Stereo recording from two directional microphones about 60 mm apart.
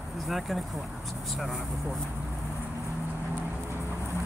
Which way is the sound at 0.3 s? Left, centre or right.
Centre.